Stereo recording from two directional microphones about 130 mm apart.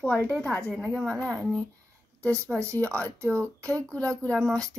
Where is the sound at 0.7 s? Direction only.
5° left (ahead or behind).